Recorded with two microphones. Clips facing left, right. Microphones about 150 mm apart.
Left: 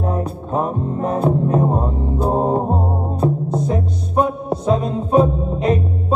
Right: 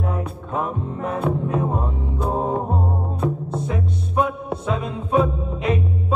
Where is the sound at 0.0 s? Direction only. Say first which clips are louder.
Left 5 dB; 35° left (ahead or behind).